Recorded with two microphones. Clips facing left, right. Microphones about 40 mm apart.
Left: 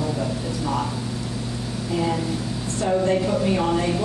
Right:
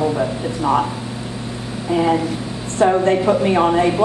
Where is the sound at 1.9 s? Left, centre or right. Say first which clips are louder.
Right 7 dB; right.